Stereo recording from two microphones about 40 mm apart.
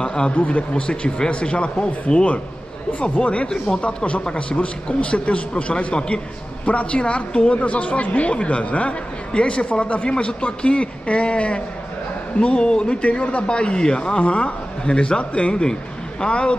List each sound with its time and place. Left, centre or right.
0.0 s a man's voice: left
0.4 s a man's voice: left
3.4 s a man's voice: centre
3.8 s a man's voice: left
9.7 s a man's voice: left